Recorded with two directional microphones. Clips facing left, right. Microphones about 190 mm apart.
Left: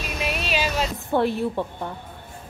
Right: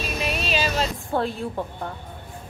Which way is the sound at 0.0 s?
15° left (ahead or behind).